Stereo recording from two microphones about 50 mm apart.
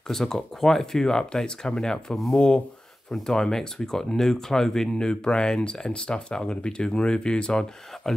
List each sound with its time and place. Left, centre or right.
0.1 s speech: centre